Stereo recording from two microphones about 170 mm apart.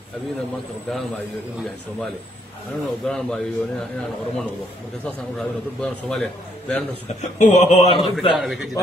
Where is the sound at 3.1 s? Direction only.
5° left (ahead or behind).